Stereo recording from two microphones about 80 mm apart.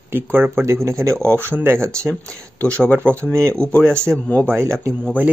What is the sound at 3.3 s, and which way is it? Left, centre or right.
Speech, right.